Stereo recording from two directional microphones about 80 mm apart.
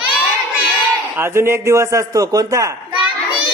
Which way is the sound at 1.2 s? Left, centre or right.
Right.